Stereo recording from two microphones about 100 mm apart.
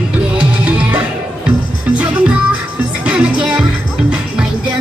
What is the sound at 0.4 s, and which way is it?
Music, 10° right (ahead or behind).